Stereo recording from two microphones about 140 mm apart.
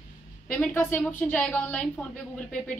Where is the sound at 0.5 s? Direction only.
15° left (ahead or behind).